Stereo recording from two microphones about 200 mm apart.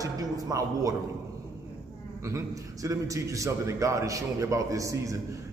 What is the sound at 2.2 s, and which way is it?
A man's voice, 15° right (ahead or behind).